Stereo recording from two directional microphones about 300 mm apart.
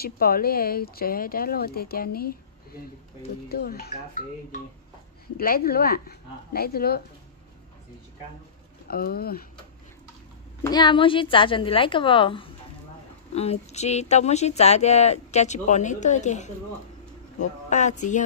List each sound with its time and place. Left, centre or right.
0.0 s speech: left
8.8 s speech: left
10.6 s a woman's voice: centre
17.6 s speech: left